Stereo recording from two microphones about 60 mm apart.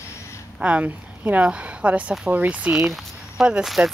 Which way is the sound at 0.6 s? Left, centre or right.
Centre.